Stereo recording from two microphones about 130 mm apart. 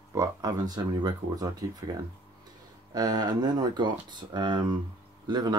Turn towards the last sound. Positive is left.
turn(degrees=-35)  # may be behind; listen again after turning